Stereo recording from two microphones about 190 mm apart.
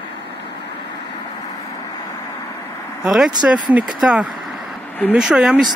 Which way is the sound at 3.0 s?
Centre (ahead or behind).